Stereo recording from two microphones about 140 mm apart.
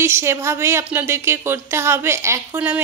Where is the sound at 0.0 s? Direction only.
20° right (ahead or behind).